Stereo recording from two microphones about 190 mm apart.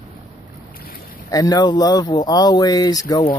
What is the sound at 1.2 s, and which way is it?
Speech, 20° left (ahead or behind).